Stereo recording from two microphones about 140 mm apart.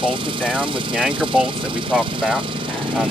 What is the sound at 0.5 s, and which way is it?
Speech, 5° right (ahead or behind).